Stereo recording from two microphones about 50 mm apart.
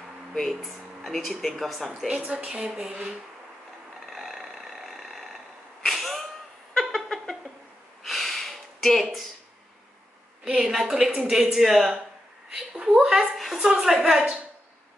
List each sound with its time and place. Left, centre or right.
0.3 s speech: centre
2.0 s speech: right
4.0 s vehicle: centre
5.9 s a sound: centre
6.7 s cat: centre
8.0 s a sound: centre
10.4 s a woman's voice: centre
12.7 s a woman's voice: centre